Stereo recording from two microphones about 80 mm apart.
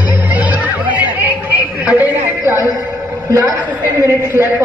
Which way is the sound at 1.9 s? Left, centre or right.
Right.